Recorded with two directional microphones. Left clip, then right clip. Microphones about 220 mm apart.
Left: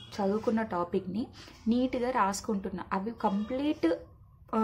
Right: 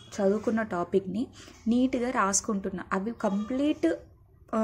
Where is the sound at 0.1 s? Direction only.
10° right (ahead or behind).